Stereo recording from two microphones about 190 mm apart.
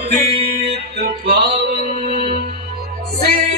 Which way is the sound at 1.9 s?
35° right (ahead or behind).